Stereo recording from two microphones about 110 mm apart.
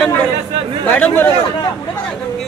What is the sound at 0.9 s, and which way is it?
Speech, 15° left (ahead or behind).